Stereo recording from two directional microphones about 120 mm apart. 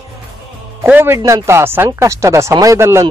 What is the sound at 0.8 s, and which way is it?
Speech, 15° right (ahead or behind).